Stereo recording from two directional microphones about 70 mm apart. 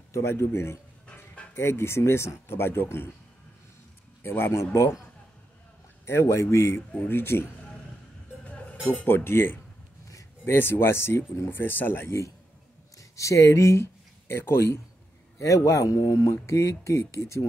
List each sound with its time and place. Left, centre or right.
0.1 s speech: left
4.2 s speech: left
6.0 s speech: left
9.0 s speech: left
13.1 s speech: left